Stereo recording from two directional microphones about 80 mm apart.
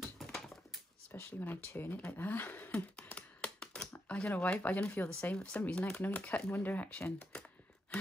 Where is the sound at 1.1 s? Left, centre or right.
Left.